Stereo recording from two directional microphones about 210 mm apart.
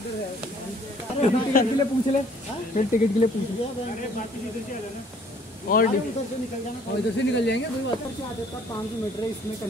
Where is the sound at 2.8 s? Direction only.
35° left (ahead or behind).